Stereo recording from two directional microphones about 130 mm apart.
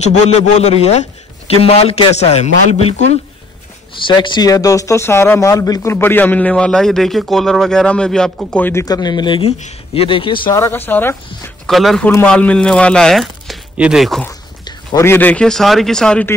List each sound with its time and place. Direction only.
0.0 s a man's voice: 60° left (ahead or behind)
3.9 s speech: 40° left (ahead or behind)
5.9 s a man's voice: 15° left (ahead or behind)
8.8 s speech: 30° left (ahead or behind)
10.5 s speech: 15° left (ahead or behind)
11.6 s a man's voice: centre (ahead or behind)
15.0 s a man's voice: 15° left (ahead or behind)